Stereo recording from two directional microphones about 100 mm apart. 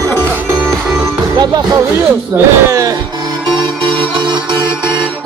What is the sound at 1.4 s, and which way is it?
A man's voice, 35° right (ahead or behind).